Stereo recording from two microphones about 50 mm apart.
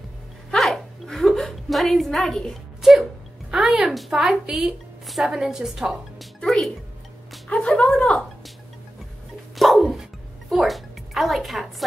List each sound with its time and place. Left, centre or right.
0.6 s a sound: centre
2.8 s a sound: centre
3.5 s a woman's voice: centre
6.1 s music: centre
7.4 s a woman's voice: left
9.6 s music: centre